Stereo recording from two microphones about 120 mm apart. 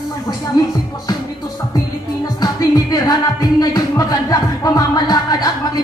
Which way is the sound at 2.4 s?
35° left (ahead or behind).